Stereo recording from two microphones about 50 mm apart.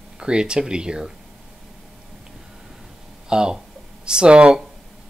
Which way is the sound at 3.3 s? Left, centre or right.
Centre.